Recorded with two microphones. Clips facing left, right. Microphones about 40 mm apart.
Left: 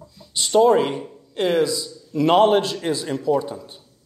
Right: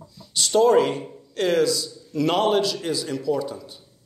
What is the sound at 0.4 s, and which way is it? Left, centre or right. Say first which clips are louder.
A man's voice: left 1 dB; centre.